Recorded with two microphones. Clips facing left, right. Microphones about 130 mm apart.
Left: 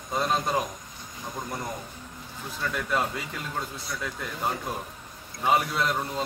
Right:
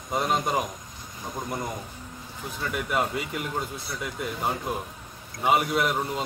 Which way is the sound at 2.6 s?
15° right (ahead or behind).